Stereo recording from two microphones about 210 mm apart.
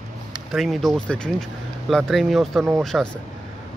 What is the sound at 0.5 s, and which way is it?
Speech, centre (ahead or behind).